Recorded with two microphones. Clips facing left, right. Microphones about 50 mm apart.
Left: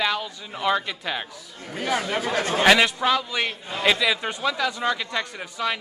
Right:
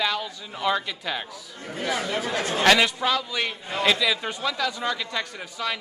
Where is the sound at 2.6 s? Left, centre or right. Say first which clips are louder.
Left 1 dB; centre.